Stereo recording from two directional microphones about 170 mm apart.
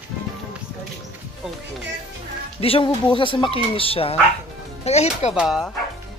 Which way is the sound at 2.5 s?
35° left (ahead or behind).